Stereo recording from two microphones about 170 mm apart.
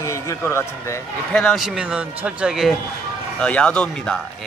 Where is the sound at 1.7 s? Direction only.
5° right (ahead or behind).